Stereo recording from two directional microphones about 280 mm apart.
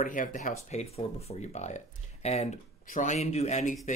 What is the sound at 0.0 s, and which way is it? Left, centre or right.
Speech, left.